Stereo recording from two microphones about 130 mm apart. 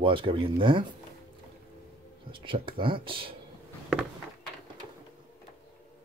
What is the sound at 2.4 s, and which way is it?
Speech, 40° right (ahead or behind).